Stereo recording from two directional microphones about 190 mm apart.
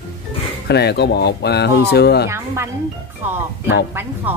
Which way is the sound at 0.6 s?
60° left (ahead or behind).